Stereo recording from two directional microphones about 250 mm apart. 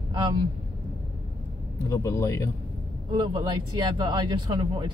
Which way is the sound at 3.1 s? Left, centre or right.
Centre.